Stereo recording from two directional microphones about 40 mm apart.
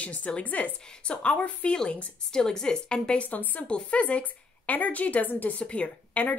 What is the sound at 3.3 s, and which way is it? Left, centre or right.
Speech, left.